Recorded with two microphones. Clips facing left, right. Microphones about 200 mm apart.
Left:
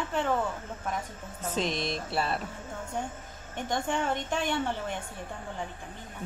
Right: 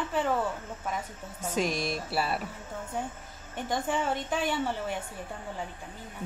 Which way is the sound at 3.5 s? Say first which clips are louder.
Even; 5° right (ahead or behind).